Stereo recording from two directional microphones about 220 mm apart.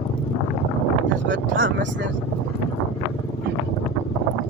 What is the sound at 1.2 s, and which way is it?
Vehicle, 60° right (ahead or behind).